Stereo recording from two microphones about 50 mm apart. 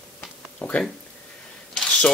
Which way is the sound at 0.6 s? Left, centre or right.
Left.